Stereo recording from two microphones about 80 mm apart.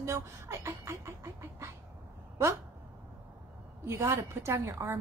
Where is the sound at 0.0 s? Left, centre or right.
Right.